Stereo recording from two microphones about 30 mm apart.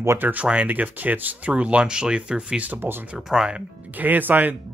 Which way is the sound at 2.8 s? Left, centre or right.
Right.